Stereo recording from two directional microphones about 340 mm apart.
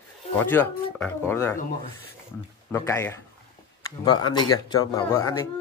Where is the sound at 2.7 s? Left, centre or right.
Centre.